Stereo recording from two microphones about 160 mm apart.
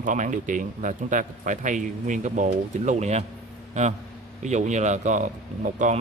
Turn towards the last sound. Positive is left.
turn(degrees=-50)  # may be behind; listen again after turning